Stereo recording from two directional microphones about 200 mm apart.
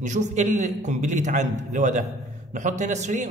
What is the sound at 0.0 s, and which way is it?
A man's voice, 35° right (ahead or behind).